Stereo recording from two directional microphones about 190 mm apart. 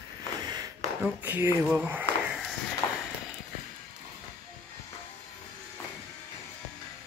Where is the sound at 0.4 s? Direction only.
20° right (ahead or behind).